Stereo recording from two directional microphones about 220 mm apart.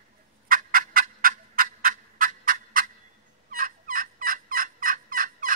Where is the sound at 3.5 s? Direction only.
40° right (ahead or behind).